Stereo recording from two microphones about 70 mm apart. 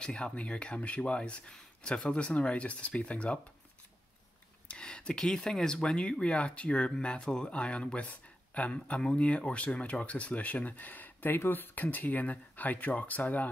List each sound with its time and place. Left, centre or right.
0.0 s speech: centre
4.6 s speech: centre